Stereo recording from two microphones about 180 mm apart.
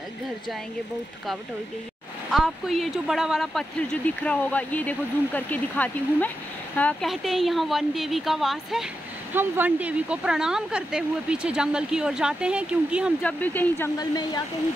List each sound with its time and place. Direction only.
2.3 s speech: centre (ahead or behind)
9.3 s speech: 10° right (ahead or behind)
13.2 s speech: 10° left (ahead or behind)
13.9 s speech: 20° left (ahead or behind)